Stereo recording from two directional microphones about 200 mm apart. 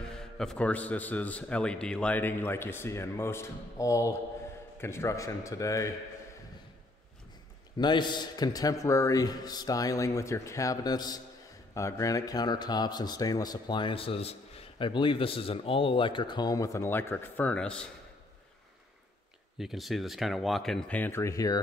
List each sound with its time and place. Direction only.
0.1 s a man's voice: 5° left (ahead or behind)
7.7 s speech: 20° left (ahead or behind); by 17.8 s 5° left (ahead or behind)
19.6 s speech: centre (ahead or behind); by 21.5 s 15° left (ahead or behind)